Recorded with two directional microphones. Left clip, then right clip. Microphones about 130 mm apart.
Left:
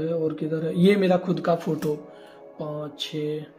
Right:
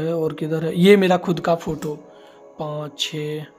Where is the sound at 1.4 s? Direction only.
35° right (ahead or behind).